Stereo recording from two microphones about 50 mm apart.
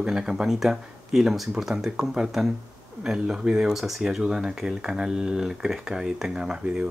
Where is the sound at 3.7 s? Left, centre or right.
Centre.